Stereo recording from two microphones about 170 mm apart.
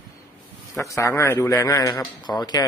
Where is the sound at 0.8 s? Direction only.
20° left (ahead or behind).